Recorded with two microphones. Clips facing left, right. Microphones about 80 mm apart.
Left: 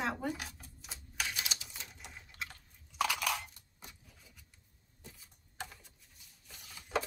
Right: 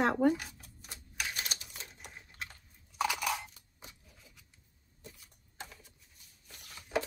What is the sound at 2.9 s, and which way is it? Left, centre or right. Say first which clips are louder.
Crunch: right 1 dB; centre.